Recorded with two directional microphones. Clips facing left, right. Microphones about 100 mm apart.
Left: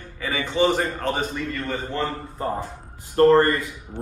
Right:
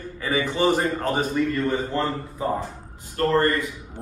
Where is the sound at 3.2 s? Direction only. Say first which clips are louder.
Left 8 dB; 35° left (ahead or behind).